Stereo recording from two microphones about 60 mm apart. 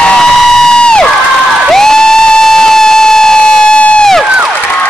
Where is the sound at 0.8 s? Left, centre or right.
Centre.